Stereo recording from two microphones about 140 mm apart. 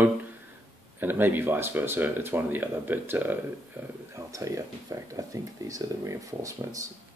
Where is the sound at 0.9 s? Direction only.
15° right (ahead or behind).